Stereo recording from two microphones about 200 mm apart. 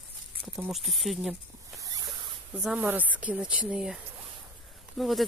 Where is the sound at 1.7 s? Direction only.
15° right (ahead or behind).